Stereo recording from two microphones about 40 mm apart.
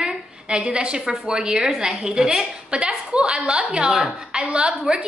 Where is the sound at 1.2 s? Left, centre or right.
Right.